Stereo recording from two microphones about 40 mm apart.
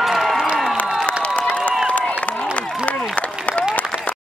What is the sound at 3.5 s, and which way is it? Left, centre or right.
Run, left.